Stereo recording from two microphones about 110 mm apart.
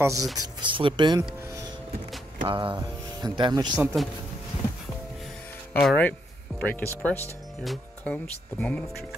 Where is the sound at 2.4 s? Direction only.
50° right (ahead or behind).